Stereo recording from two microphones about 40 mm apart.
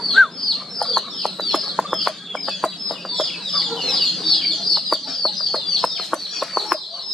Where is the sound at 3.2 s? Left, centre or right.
Centre.